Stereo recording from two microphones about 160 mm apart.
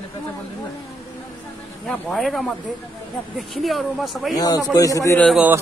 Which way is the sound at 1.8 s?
Centre (ahead or behind).